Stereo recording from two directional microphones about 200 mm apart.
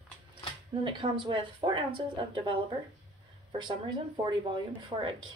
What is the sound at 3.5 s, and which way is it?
Speech, 20° right (ahead or behind).